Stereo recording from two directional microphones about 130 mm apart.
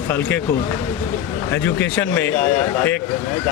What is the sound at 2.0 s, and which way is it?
Speech, 15° left (ahead or behind).